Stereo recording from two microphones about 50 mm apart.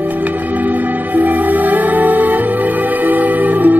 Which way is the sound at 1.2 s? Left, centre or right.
Right.